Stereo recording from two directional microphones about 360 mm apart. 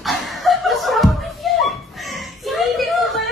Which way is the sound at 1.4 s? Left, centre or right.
Centre.